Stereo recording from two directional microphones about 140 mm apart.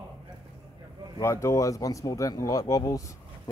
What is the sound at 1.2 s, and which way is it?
Speech, 20° left (ahead or behind).